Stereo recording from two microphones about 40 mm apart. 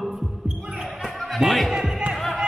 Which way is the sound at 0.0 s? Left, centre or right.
Centre.